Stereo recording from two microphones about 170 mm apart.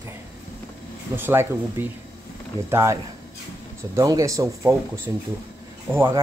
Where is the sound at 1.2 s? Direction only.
15° right (ahead or behind).